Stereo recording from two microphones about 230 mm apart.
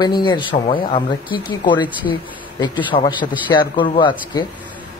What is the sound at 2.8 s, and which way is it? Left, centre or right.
Speech, left.